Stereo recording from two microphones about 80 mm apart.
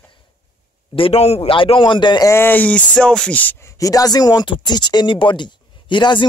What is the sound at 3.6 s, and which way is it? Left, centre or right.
Speech, left.